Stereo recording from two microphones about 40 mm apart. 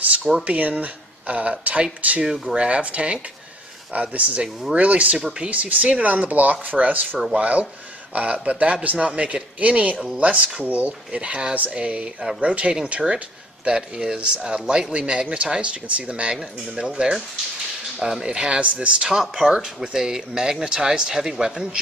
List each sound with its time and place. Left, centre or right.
0.4 s speech: right
2.2 s speech: centre
2.5 s speech: right
7.3 s speech: right
17.9 s speech: centre
18.2 s speech: right
19.0 s speech: centre